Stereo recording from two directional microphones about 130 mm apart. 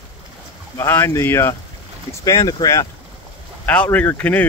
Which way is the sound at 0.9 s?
20° left (ahead or behind).